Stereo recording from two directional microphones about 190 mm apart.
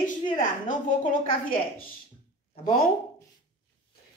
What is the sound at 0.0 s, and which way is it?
A woman's voice, 45° left (ahead or behind).